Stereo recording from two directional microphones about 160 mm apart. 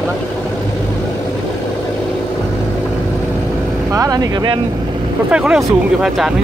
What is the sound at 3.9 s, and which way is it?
Speech, 20° right (ahead or behind).